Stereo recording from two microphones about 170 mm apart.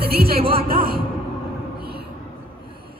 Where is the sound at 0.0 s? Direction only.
65° right (ahead or behind).